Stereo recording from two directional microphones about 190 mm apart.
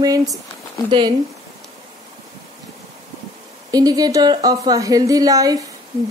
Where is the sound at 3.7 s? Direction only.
20° right (ahead or behind).